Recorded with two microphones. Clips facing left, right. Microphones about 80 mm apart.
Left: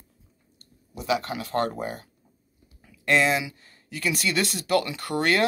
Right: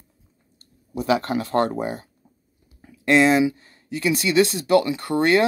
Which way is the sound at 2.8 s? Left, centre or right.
Right.